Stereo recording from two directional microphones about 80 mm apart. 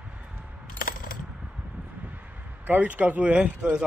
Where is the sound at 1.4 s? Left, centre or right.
Centre.